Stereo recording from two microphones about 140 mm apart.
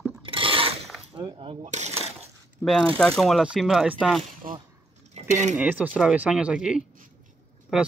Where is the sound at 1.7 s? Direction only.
55° right (ahead or behind).